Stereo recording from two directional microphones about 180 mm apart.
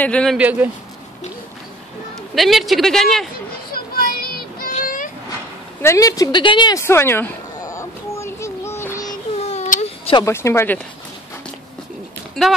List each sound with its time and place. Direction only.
0.0 s speech: 5° left (ahead or behind)
0.4 s speech: 10° right (ahead or behind)
2.3 s speech: centre (ahead or behind)
3.7 s child singing: 55° left (ahead or behind)
4.7 s vehicle: 45° left (ahead or behind)
5.8 s a sound: 15° left (ahead or behind)
9.4 s baby cry: 40° left (ahead or behind)
10.2 s speech: 15° left (ahead or behind)
12.4 s speech: centre (ahead or behind)